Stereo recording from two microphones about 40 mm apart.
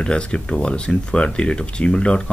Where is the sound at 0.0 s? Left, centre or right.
Left.